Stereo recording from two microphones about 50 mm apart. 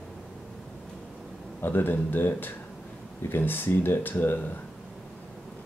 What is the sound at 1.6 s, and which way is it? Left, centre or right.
Speech, left.